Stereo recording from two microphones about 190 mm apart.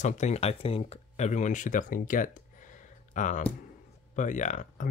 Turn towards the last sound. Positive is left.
turn(degrees=40)  # may be behind; listen again after turning